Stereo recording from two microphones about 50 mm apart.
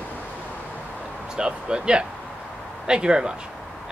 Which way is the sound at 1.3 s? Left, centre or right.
Centre.